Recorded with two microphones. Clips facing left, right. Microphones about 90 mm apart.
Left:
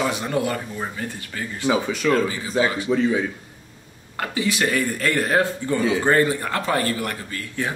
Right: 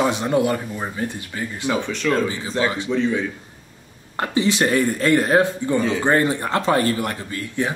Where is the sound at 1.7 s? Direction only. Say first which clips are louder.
Left 1 dB; 5° left (ahead or behind).